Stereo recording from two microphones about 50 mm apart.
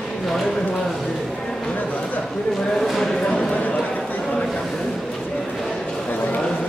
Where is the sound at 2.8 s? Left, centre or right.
Centre.